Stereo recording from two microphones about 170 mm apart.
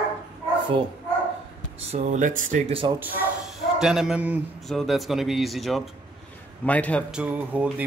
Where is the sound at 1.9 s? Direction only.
45° right (ahead or behind).